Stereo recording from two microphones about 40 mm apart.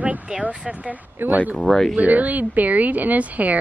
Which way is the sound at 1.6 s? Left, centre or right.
Centre.